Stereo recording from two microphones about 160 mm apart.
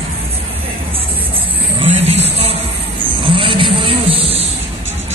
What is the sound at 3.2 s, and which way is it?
Vehicle, 35° right (ahead or behind).